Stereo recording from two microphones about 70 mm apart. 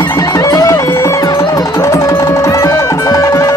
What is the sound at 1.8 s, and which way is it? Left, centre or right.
Music, left.